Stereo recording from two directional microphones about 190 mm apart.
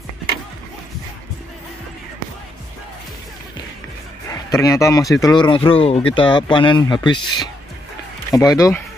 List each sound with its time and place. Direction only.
4.3 s speech: 15° left (ahead or behind)